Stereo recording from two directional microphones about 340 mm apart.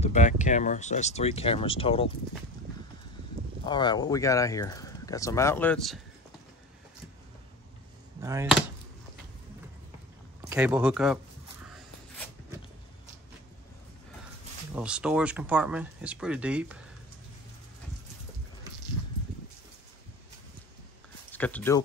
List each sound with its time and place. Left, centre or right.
0.0 s speech: left
3.6 s speech: centre
8.2 s speech: centre
10.5 s speech: centre
14.8 s speech: centre
21.3 s speech: centre